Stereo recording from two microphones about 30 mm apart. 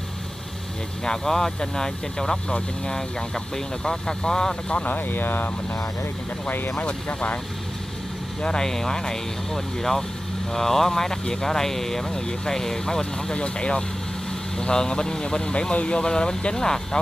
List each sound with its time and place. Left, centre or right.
1.0 s speech: centre
4.8 s speech: left
8.4 s speech: left
8.6 s speech: centre
12.1 s speech: left
13.3 s speech: left